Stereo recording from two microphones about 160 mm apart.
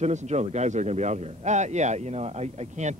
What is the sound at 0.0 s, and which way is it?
Speech, 45° right (ahead or behind).